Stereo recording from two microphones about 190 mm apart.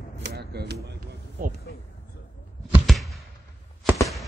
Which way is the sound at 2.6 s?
5° right (ahead or behind).